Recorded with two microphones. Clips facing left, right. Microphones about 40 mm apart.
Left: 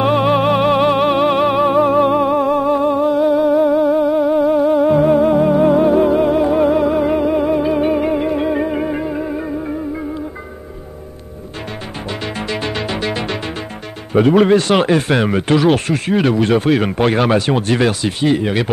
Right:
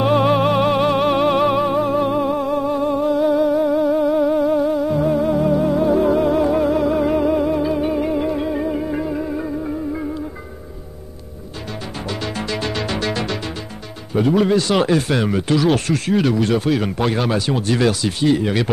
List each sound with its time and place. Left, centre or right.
0.0 s music: left
1.8 s music: left
6.0 s music: left
7.4 s music: left
9.0 s music: left
12.1 s music: left
14.1 s speech: left